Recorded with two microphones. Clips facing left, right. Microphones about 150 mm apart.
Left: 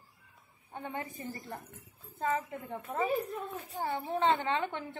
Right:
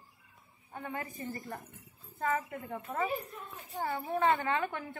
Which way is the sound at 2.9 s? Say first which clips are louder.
Left 1 dB; 15° left (ahead or behind).